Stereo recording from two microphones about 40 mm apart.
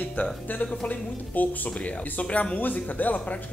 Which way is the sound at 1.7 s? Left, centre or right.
Left.